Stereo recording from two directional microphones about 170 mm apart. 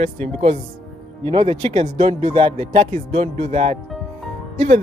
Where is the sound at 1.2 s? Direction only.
30° right (ahead or behind).